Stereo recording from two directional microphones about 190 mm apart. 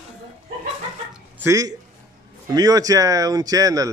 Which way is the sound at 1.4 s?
20° right (ahead or behind).